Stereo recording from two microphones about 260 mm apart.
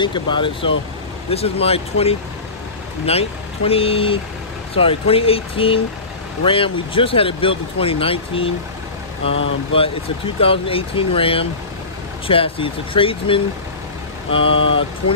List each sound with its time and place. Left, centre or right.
0.0 s speech: centre
9.8 s speech: left